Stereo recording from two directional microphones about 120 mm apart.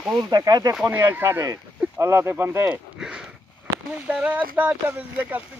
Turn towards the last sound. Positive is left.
turn(degrees=-10)  # may be behind; listen again after turning